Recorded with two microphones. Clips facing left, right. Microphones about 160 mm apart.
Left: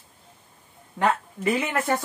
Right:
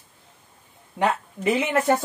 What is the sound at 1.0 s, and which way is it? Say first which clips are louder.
Speech: even; 20° right (ahead or behind).